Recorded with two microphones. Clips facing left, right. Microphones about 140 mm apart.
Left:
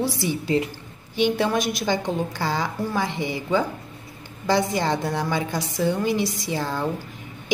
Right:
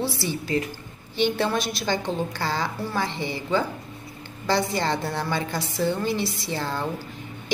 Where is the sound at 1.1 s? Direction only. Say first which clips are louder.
Left 2 dB; 10° left (ahead or behind).